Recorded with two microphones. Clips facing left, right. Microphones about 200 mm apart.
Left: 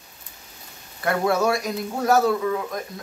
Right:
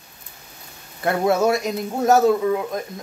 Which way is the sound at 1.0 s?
20° right (ahead or behind).